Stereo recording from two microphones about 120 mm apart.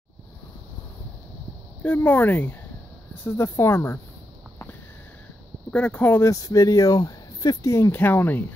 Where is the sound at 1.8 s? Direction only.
15° left (ahead or behind).